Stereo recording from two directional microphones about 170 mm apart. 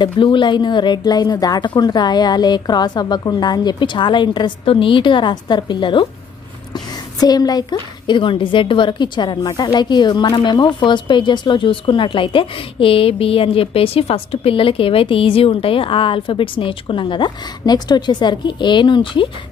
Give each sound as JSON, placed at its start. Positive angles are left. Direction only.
{"t": 0.0, "sound": "a woman's voice", "side_deg": 30}
{"t": 6.7, "sound": "a sound", "side_deg": 25}
{"t": 8.1, "sound": "a woman's voice", "side_deg": 30}